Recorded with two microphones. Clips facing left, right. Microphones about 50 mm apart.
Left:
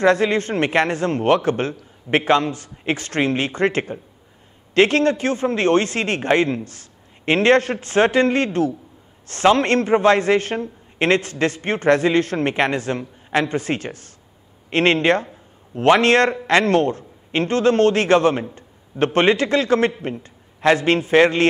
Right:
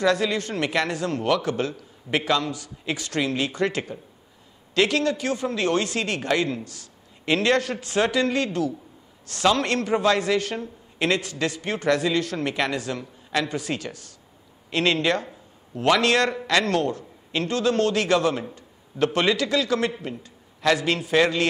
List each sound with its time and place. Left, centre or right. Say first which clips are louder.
0.0 s a man's voice: left 6 dB; left